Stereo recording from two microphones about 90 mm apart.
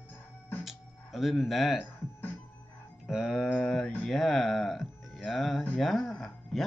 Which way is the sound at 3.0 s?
5° right (ahead or behind).